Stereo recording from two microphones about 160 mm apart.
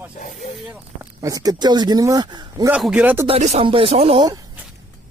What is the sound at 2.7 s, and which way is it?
Speech, 5° right (ahead or behind).